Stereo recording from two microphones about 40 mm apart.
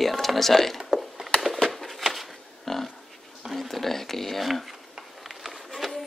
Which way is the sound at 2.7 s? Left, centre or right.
Centre.